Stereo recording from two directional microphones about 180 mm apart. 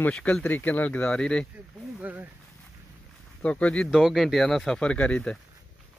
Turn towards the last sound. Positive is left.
turn(degrees=5)  # may be behind; listen again after turning